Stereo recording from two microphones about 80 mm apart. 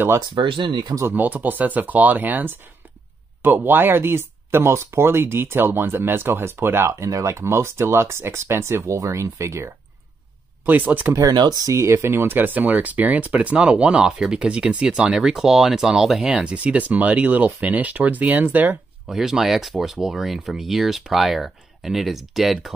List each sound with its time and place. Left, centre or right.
0.3 s speech: right
1.0 s speech: right
7.1 s speech: right
10.6 s speech: right
11.3 s speech: right
11.7 s speech: right
19.0 s speech: centre